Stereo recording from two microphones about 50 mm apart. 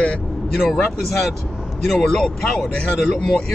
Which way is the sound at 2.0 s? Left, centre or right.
Centre.